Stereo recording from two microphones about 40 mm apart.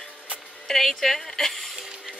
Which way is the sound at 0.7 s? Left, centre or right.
Centre.